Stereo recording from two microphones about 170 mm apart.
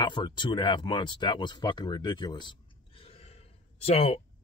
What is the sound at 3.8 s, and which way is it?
Speech, 35° left (ahead or behind).